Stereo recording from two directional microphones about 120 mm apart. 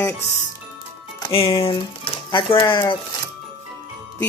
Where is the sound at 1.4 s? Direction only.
55° left (ahead or behind).